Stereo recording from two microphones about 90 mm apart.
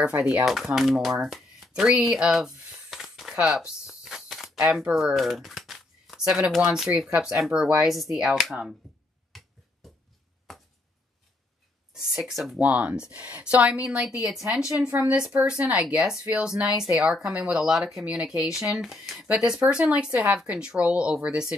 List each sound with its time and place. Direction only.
0.0 s speech: 15° right (ahead or behind)
0.5 s a sound: 5° right (ahead or behind)
4.6 s speech: 5° right (ahead or behind)
9.3 s finger snapping: centre (ahead or behind)
11.9 s speech: centre (ahead or behind)
12.5 s speech: 15° right (ahead or behind)
20.1 s a woman's voice: 20° right (ahead or behind)